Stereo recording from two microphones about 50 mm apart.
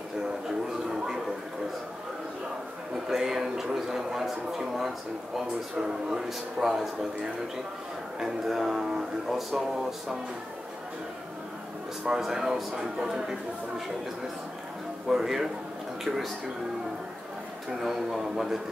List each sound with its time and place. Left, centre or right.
0.8 s a sound: centre
3.1 s speech: centre
8.2 s a man's voice: centre
12.1 s speech: centre
15.0 s a man's voice: centre
17.6 s a man's voice: centre